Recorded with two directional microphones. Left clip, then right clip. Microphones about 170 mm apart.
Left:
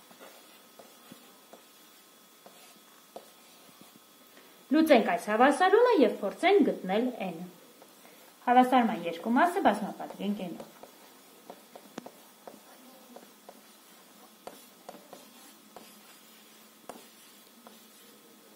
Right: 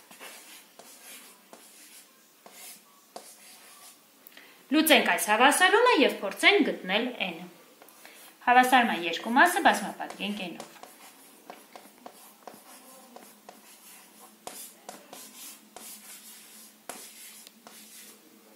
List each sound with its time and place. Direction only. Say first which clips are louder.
4.6 s speech: right 1 dB; 50° left (ahead or behind)
8.5 s speech: right 3 dB; 50° left (ahead or behind)